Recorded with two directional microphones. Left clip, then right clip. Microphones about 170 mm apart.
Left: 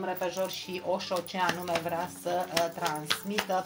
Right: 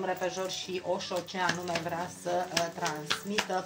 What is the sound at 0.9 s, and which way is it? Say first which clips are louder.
Speech: left 2 dB; 35° left (ahead or behind).